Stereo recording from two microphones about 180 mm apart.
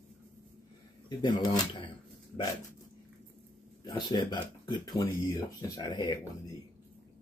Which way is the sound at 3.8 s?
20° left (ahead or behind).